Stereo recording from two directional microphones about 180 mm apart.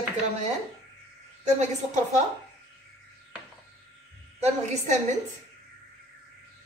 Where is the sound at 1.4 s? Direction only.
40° right (ahead or behind).